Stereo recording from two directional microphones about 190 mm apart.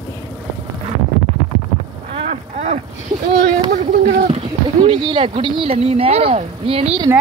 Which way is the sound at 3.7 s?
40° right (ahead or behind).